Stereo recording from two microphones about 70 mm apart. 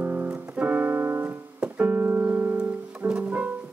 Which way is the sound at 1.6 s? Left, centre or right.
Right.